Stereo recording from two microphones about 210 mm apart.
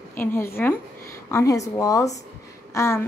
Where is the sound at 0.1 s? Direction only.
10° left (ahead or behind).